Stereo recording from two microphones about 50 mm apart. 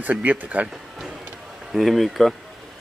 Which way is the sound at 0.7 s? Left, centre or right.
Centre.